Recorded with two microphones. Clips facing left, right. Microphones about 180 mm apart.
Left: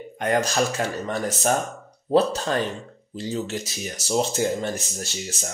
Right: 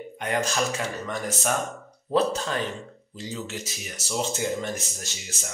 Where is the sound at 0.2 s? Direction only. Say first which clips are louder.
Left 4 dB; 40° left (ahead or behind).